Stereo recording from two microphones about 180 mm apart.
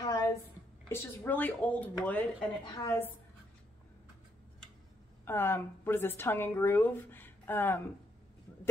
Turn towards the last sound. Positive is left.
turn(degrees=10)  # may be behind; listen again after turning